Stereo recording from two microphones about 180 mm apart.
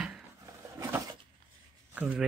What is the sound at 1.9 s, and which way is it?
Speech, 5° right (ahead or behind).